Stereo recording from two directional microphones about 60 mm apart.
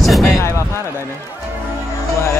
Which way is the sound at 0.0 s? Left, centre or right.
Centre.